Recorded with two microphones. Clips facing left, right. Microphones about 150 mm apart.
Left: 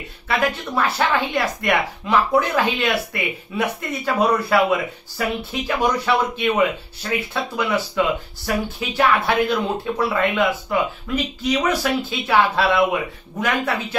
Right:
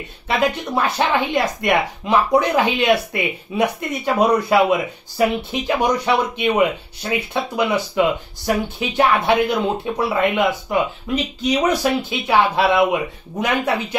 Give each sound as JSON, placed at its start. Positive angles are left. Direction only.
{"t": 0.4, "sound": "speech", "side_deg": -20}